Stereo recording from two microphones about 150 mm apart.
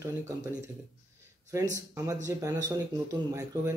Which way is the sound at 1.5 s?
20° right (ahead or behind).